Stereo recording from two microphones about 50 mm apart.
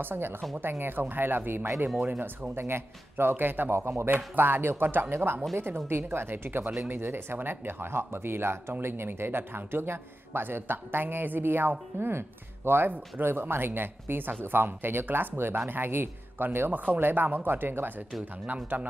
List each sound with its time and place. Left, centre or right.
0.0 s speech: right
2.5 s speech: right
3.7 s speech: right
5.1 s speech: right
18.5 s speech: right